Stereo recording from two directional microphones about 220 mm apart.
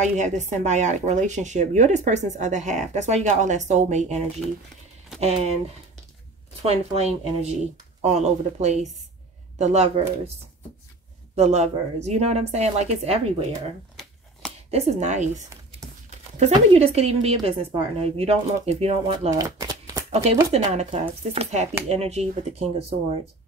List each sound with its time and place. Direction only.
0.2 s a woman's voice: 30° right (ahead or behind)
6.6 s a woman's voice: 25° right (ahead or behind)
11.3 s a woman's voice: 30° right (ahead or behind)
14.7 s speech: 30° right (ahead or behind)
20.2 s a woman's voice: 30° right (ahead or behind)